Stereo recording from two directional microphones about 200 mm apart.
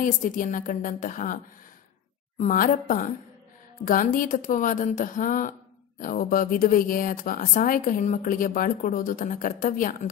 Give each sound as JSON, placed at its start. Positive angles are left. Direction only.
{"t": 0.0, "sound": "a woman's voice", "side_deg": 40}